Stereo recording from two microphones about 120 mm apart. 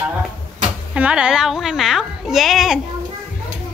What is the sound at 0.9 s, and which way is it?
Speech, 10° right (ahead or behind).